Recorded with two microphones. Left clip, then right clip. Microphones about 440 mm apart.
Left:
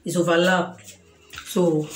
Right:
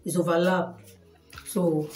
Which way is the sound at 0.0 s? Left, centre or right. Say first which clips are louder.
Left 4 dB; right.